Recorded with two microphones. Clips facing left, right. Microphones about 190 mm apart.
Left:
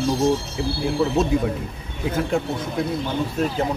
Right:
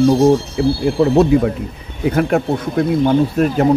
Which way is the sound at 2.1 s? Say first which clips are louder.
Right 7 dB; 65° right (ahead or behind).